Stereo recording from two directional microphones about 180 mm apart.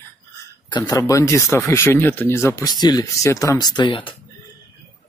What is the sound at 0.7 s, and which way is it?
Speech, 25° left (ahead or behind).